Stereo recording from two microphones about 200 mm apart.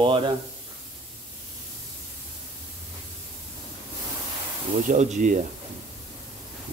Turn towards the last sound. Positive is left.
turn(degrees=-40)  # may be behind; listen again after turning